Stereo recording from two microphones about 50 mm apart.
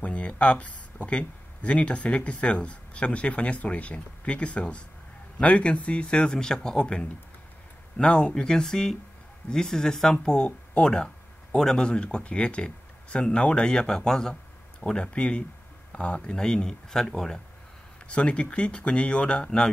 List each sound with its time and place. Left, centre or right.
0.0 s speech: left
6.2 s speech: centre
16.3 s speech: centre